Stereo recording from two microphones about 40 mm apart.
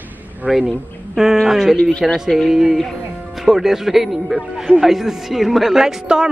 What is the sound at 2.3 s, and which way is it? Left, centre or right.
Speech, centre.